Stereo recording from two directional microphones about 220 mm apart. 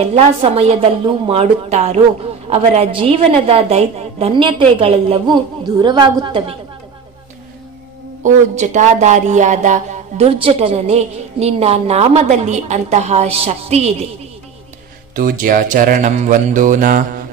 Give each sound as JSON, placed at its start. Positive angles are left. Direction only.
{"t": 0.0, "sound": "a woman's voice", "side_deg": -25}
{"t": 8.2, "sound": "speech", "side_deg": -35}
{"t": 15.1, "sound": "speech", "side_deg": -40}